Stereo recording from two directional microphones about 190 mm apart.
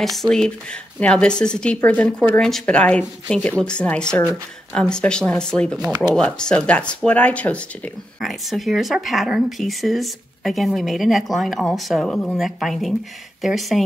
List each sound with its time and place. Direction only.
0.0 s speech: centre (ahead or behind)
5.8 s speech: 20° right (ahead or behind)
6.1 s speech: 5° left (ahead or behind)